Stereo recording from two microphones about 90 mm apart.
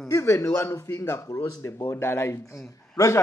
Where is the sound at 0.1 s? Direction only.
35° left (ahead or behind).